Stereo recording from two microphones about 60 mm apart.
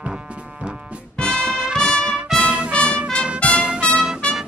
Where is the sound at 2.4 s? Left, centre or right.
Centre.